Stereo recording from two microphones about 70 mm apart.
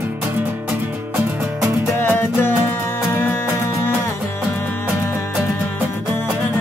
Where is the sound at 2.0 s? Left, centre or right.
Left.